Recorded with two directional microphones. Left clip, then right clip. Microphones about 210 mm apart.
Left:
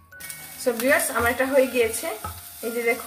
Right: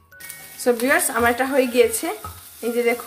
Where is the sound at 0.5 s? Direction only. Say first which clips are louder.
Right 3 dB; 50° right (ahead or behind).